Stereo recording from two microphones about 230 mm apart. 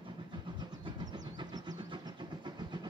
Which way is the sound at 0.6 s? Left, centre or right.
Centre.